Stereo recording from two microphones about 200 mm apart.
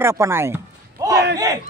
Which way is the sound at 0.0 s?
15° right (ahead or behind).